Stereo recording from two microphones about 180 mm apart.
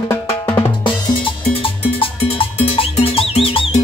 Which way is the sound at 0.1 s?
15° left (ahead or behind).